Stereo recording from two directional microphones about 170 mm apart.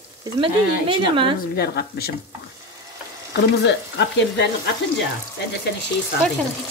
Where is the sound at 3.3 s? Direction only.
85° left.